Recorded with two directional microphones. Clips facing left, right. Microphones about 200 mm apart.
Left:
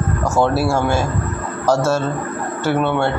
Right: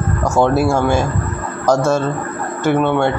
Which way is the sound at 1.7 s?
15° right (ahead or behind).